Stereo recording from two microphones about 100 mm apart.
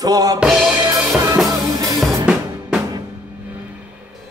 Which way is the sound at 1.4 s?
35° right (ahead or behind).